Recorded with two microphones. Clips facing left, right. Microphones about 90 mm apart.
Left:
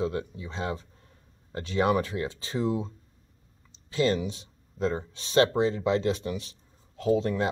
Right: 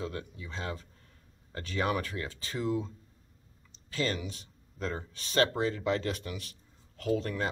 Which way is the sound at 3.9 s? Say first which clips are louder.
Left 7 dB; 30° left (ahead or behind).